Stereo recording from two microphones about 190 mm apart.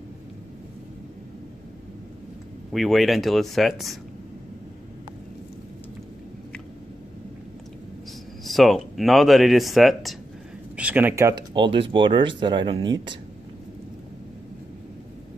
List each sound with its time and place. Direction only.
2.7 s speech: centre (ahead or behind)
8.5 s speech: centre (ahead or behind); by 13.1 s 25° right (ahead or behind)